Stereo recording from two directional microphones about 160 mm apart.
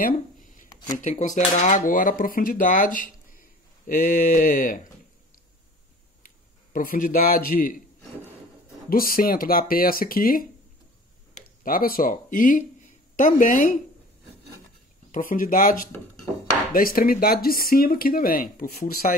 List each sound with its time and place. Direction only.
0.0 s a sound: 55° left (ahead or behind)
0.7 s a sound: 25° left (ahead or behind)
1.0 s speech: 50° left (ahead or behind)
6.7 s speech: 60° left (ahead or behind)
8.8 s speech: 65° left (ahead or behind)
15.0 s speech: 60° left (ahead or behind)